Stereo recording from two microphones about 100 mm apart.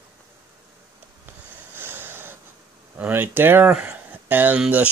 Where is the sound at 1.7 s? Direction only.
20° right (ahead or behind).